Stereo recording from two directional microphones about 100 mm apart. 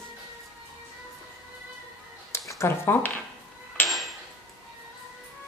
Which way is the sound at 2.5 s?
25° left (ahead or behind).